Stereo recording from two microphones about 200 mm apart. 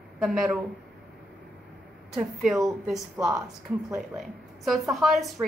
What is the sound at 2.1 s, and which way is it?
A woman's voice, centre (ahead or behind).